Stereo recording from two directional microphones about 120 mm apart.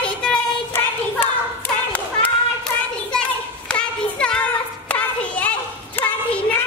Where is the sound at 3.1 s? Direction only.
10° left (ahead or behind).